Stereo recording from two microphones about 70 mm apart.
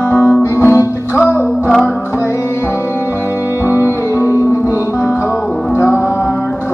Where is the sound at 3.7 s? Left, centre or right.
Left.